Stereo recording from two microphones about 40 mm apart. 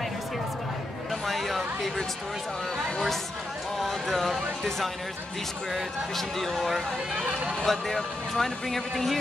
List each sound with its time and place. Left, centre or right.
1.2 s a sound: centre
3.8 s speech: centre
7.2 s speech: right
7.6 s speech: centre